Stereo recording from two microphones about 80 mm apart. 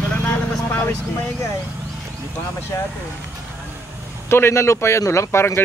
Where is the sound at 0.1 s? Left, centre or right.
Left.